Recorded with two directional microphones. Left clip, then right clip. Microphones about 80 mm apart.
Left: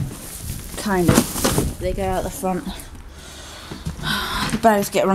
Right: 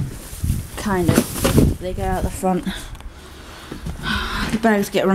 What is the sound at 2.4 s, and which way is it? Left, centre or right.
Speech, right.